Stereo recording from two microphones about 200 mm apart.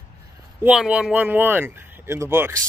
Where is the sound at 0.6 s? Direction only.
5° right (ahead or behind).